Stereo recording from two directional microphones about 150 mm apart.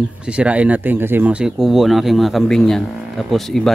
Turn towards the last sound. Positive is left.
turn(degrees=0)  # may be behind; listen again after turning